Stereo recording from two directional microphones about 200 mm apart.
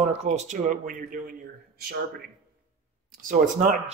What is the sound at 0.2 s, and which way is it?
Speech, 35° right (ahead or behind).